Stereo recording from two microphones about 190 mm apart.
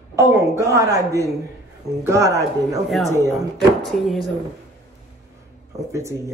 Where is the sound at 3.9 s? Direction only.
Centre (ahead or behind).